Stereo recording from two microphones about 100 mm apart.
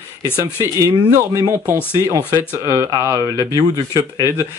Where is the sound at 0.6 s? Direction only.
30° right (ahead or behind).